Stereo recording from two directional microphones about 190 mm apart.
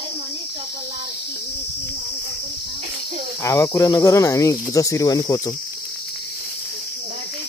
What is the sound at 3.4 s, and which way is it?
Speech, 15° left (ahead or behind).